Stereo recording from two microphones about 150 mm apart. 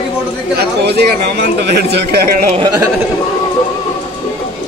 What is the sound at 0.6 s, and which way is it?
A man's voice, 90° right.